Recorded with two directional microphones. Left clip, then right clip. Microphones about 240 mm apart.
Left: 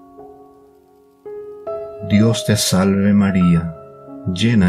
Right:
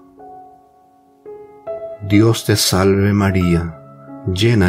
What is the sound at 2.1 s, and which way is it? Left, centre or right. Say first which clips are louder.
Speech: right 3 dB; right.